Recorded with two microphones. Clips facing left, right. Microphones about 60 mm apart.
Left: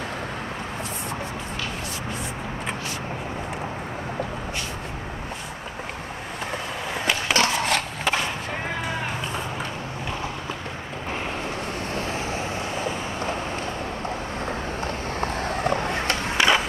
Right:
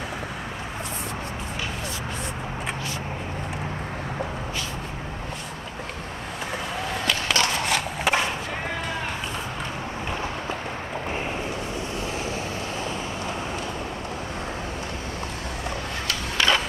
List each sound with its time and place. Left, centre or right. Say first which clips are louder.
7.1 s skateboard: left 2 dB; centre
7.5 s a sound: left 1 dB; centre
11.9 s vehicle: left 2 dB; left
12.2 s vehicle: left 1 dB; left
15.1 s vehicle: left 6 dB; left
16.3 s skateboard: left 2 dB; centre